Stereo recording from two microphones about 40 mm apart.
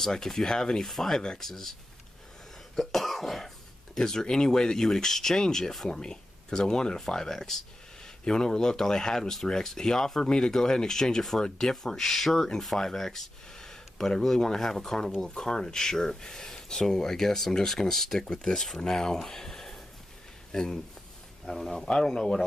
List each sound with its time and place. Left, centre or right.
0.0 s speech: centre
2.7 s cough: centre
4.0 s speech: centre